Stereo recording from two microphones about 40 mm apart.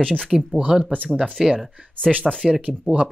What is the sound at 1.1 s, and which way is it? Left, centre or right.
Speech, centre.